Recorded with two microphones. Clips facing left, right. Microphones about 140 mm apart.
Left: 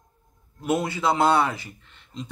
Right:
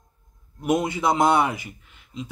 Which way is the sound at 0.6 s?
15° right (ahead or behind).